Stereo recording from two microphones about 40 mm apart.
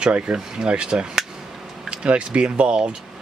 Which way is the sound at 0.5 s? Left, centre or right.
Right.